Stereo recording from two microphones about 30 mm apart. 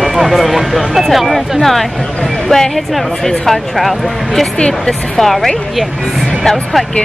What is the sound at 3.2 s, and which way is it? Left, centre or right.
Speech, centre.